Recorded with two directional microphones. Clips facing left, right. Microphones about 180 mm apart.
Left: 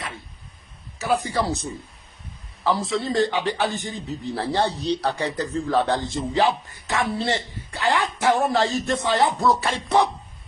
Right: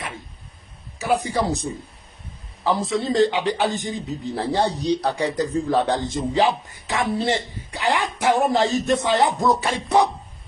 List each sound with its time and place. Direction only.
0.9 s a man's voice: 15° right (ahead or behind)
2.6 s a man's voice: 20° right (ahead or behind)